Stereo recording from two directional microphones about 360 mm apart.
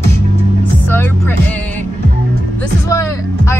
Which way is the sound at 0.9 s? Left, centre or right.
Centre.